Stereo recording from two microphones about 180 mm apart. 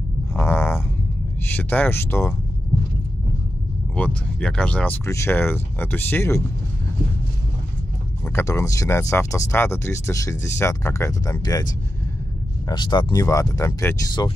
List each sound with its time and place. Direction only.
0.3 s a sound: 10° left (ahead or behind)
1.5 s speech: 10° left (ahead or behind)
3.9 s speech: 5° left (ahead or behind)
8.3 s speech: 15° left (ahead or behind)
12.6 s speech: 25° left (ahead or behind)